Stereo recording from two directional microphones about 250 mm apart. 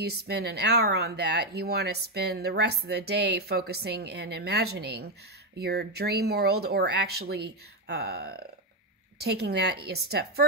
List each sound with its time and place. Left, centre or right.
0.0 s speech: right